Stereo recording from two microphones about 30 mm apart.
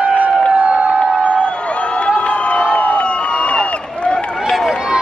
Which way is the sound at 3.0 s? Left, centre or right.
Left.